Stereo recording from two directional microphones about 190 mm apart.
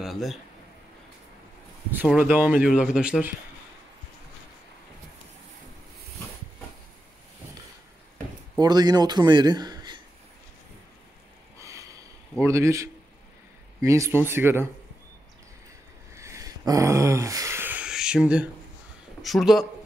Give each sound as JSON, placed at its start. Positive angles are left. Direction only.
{"t": 0.0, "sound": "speech", "side_deg": 0}
{"t": 1.9, "sound": "speech", "side_deg": -10}
{"t": 8.5, "sound": "a man's voice", "side_deg": -20}
{"t": 11.5, "sound": "sniff", "side_deg": -15}
{"t": 12.4, "sound": "speech", "side_deg": -15}
{"t": 16.2, "sound": "a sound", "side_deg": -15}
{"t": 19.2, "sound": "speech", "side_deg": 0}